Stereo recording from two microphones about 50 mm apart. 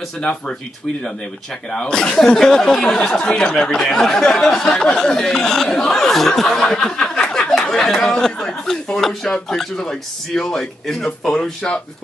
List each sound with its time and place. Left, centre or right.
0.2 s speech: centre
1.7 s speech: centre
6.8 s a sound: centre
7.7 s speech: centre